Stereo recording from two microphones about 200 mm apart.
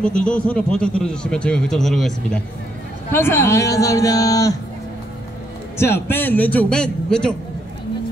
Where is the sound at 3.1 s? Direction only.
10° left (ahead or behind).